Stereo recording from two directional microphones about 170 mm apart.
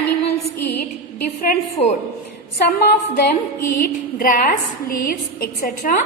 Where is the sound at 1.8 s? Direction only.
35° left (ahead or behind).